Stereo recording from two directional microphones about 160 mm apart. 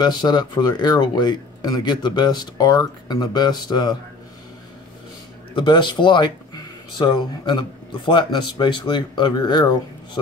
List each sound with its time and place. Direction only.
0.0 s speech: 25° left (ahead or behind)
5.5 s speech: 30° left (ahead or behind)